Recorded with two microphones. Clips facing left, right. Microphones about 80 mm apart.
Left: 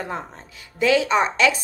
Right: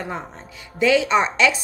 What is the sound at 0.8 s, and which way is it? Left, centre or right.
Speech, left.